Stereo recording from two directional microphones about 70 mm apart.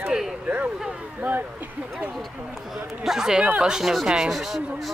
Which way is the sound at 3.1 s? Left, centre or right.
Centre.